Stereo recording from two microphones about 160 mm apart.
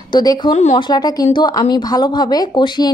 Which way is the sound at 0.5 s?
45° left (ahead or behind).